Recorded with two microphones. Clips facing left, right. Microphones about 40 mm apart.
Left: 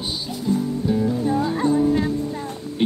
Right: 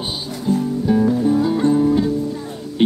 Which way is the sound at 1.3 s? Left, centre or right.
Left.